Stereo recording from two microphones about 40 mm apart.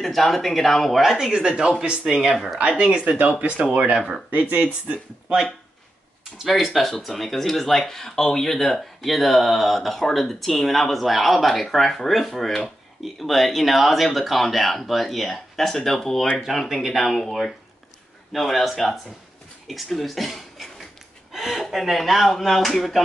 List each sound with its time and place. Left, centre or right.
0.0 s speech: centre
1.2 s speech: centre
2.3 s speech: centre
3.1 s speech: right
6.3 s speech: centre
16.6 s speech: centre